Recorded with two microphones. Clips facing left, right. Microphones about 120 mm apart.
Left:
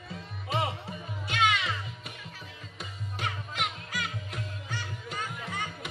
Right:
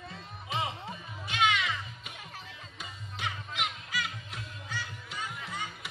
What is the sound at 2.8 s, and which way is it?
Music, 45° left (ahead or behind).